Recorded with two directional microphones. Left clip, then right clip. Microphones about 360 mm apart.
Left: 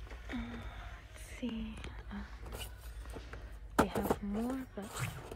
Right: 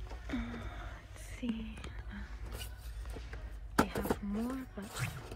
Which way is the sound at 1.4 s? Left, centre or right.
Centre.